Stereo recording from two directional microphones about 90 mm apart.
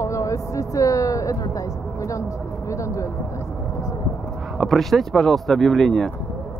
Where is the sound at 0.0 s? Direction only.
35° left (ahead or behind).